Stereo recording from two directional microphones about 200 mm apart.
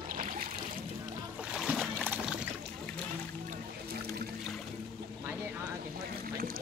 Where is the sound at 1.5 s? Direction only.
Centre (ahead or behind).